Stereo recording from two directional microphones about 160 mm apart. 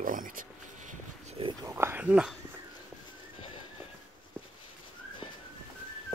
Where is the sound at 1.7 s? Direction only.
15° right (ahead or behind).